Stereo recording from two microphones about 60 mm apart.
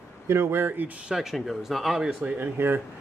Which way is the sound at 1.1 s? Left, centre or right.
Centre.